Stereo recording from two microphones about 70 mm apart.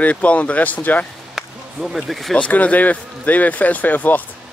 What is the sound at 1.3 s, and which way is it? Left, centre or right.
Speech, centre.